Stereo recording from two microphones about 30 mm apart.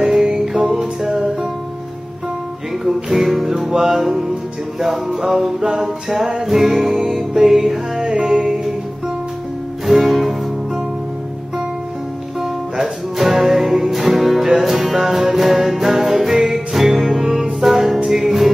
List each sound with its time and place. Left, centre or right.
0.0 s music: centre
2.8 s music: centre
9.9 s music: centre
12.4 s music: centre